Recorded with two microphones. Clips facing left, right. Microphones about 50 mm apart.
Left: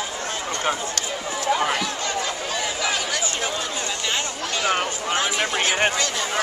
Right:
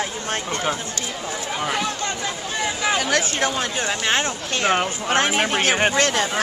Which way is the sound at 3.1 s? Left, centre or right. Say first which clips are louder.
Right 5 dB; right.